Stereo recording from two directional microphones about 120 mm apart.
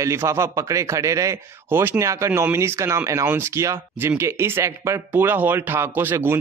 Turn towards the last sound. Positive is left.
turn(degrees=-20)  # may be behind; listen again after turning